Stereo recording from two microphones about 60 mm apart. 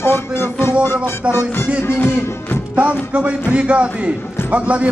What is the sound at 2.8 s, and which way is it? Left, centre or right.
Speech, right.